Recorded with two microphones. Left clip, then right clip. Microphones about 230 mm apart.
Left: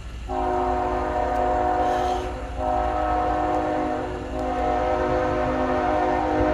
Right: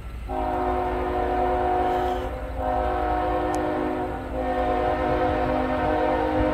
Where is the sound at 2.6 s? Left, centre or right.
Right.